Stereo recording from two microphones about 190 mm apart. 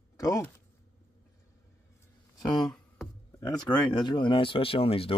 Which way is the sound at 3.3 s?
15° left (ahead or behind).